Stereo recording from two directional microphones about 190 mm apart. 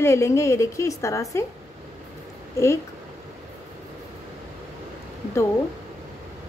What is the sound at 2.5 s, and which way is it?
Speech, 15° left (ahead or behind).